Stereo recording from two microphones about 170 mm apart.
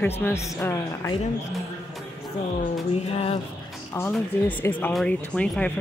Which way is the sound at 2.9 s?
35° left (ahead or behind).